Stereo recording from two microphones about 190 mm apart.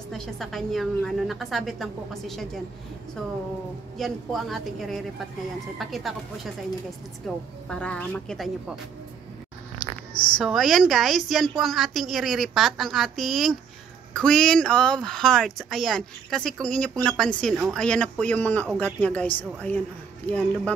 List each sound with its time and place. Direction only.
0.1 s a woman's voice: centre (ahead or behind)
4.0 s a woman's voice: centre (ahead or behind)
10.1 s speech: 25° left (ahead or behind)
10.4 s a woman's voice: centre (ahead or behind)